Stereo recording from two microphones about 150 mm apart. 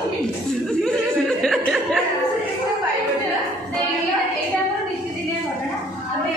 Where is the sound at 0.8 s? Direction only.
5° left (ahead or behind).